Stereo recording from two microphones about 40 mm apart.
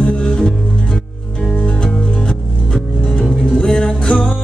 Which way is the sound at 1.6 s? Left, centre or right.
Left.